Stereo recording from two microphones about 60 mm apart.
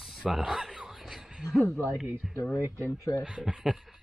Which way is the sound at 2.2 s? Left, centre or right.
Centre.